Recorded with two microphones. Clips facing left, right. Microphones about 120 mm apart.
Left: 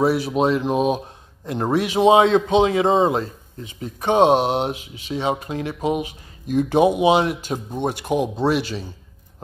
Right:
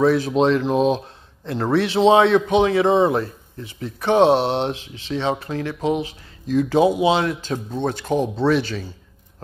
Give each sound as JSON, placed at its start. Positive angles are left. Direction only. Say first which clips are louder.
{"t": 0.0, "sound": "a man's voice", "louder": "right 2 dB", "side_deg": 10}